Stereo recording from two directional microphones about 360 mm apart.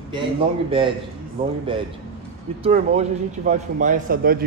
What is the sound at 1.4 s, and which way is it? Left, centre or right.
Speech, centre.